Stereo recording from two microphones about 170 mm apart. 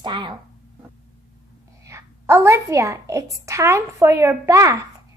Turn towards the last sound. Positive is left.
turn(degrees=-20)  # may be behind; listen again after turning